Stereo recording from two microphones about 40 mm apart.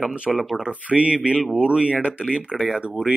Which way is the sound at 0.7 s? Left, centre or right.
Right.